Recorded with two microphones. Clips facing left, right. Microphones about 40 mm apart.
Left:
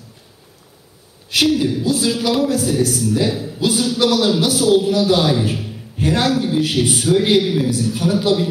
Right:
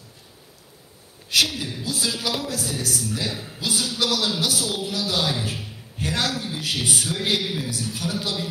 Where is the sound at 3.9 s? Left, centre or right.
Left.